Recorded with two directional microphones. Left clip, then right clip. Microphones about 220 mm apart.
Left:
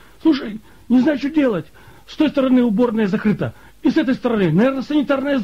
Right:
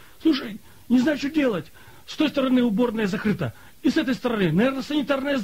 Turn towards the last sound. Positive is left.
turn(degrees=-30)  # may be behind; listen again after turning